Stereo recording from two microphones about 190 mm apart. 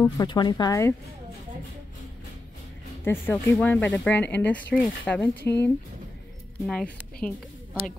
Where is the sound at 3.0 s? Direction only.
10° left (ahead or behind).